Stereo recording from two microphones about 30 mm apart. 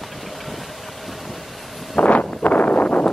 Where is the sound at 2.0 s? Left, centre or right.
Left.